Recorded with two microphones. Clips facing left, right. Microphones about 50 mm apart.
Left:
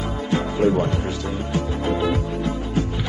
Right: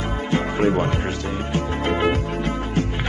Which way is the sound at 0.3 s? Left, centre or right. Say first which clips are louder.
Left 1 dB; right.